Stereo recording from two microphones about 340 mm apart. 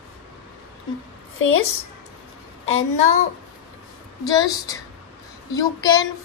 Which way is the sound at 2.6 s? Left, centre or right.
Left.